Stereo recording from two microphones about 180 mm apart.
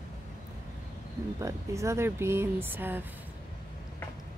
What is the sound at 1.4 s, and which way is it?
Speech, 15° right (ahead or behind).